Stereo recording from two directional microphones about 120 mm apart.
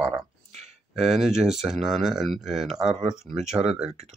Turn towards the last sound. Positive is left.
turn(degrees=-5)  # may be behind; listen again after turning